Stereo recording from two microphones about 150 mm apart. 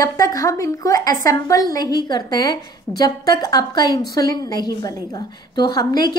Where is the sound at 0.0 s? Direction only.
25° left (ahead or behind).